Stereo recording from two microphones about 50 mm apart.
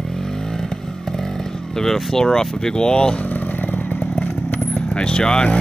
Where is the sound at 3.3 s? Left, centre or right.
Left.